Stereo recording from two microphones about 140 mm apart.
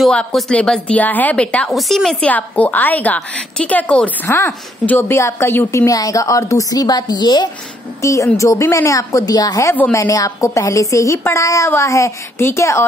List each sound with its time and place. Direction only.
0.0 s speech: 5° left (ahead or behind)